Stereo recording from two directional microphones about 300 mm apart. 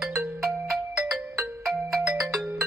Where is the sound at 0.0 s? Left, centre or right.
Centre.